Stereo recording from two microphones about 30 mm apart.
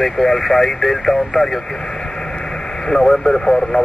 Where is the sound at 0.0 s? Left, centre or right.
Centre.